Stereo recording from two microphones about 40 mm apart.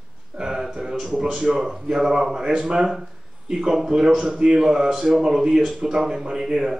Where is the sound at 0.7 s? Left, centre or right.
Right.